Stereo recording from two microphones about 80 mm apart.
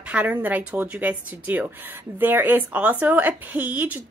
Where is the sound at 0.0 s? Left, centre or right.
Centre.